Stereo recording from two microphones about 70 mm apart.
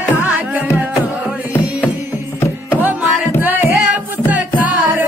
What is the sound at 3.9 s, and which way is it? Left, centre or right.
Music, right.